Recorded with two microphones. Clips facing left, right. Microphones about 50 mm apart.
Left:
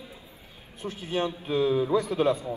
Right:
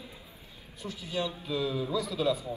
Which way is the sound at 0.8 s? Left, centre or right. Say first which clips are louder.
Left 5 dB; left.